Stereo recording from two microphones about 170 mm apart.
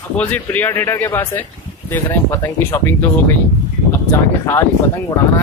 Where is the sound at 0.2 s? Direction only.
10° left (ahead or behind).